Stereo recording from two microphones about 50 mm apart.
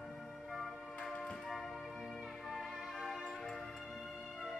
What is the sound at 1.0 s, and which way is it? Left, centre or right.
Music, centre.